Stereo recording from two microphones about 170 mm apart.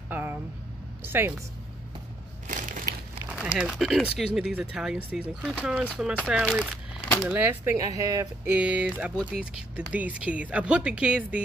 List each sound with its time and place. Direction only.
0.1 s a sound: 10° right (ahead or behind)
2.4 s crushing: 50° right (ahead or behind)
3.3 s speech: 5° right (ahead or behind); by 8.3 s 20° right (ahead or behind)
8.5 s speech: 5° right (ahead or behind)
9.1 s speech: 10° left (ahead or behind)
9.8 s speech: 5° right (ahead or behind)